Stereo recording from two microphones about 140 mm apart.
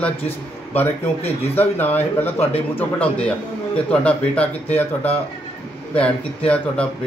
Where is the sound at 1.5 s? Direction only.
15° left (ahead or behind).